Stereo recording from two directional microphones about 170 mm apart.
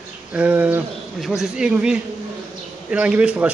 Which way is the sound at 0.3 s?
10° right (ahead or behind).